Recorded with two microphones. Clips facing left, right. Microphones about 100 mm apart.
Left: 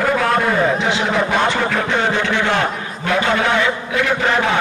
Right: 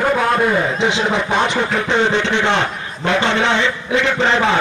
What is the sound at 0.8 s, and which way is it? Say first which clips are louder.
Speech: even; 20° right (ahead or behind).